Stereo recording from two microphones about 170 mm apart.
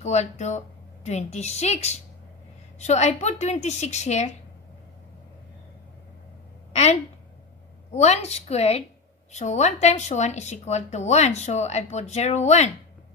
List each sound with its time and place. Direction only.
0.0 s speech: 40° left (ahead or behind)
6.7 s a woman's voice: 40° left (ahead or behind)